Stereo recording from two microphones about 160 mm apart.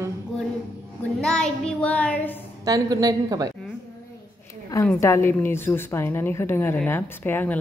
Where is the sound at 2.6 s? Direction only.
25° right (ahead or behind).